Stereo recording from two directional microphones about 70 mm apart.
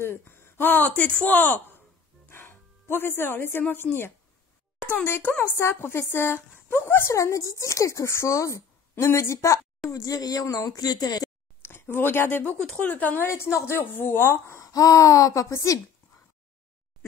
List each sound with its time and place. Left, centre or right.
0.0 s speech: left
9.8 s speech: left
11.6 s speech: left
12.5 s speech: centre
12.8 s speech: left
13.3 s speech: left
14.6 s speech: left